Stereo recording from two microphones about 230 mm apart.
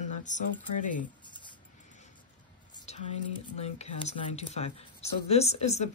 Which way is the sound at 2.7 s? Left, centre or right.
Centre.